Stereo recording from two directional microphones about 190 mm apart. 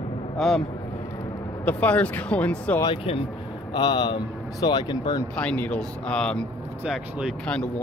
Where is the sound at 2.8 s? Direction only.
25° left (ahead or behind).